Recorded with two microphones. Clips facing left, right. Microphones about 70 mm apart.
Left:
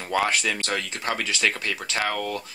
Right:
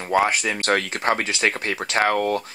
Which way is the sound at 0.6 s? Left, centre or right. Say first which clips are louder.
Right 7 dB; right.